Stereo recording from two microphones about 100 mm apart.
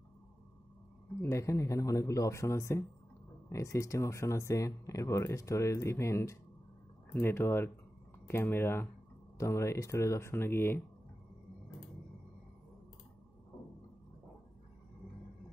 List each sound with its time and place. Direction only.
1.2 s speech: 30° left (ahead or behind)